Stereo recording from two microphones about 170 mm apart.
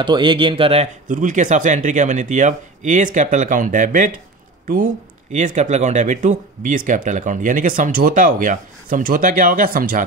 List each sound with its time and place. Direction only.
0.0 s speech: 30° right (ahead or behind); by 4.1 s 50° right (ahead or behind)
5.3 s speech: 45° right (ahead or behind)